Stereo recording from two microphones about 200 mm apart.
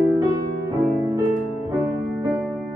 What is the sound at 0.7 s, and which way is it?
Music, 25° right (ahead or behind).